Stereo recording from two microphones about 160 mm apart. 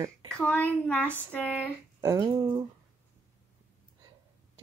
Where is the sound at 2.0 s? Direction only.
20° right (ahead or behind).